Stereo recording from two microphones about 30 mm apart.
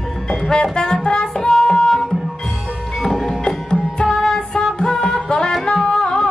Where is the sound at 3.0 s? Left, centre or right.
Centre.